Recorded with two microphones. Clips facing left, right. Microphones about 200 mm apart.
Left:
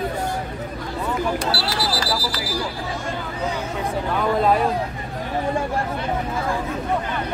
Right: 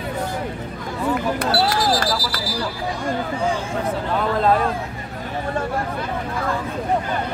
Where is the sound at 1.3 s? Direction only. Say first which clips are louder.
Right 4 dB; 50° right (ahead or behind).